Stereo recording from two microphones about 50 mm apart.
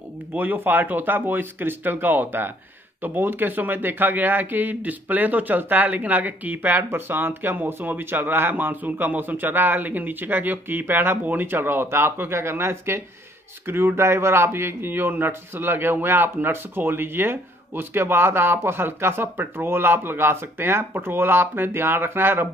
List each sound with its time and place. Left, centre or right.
0.4 s a man's voice: right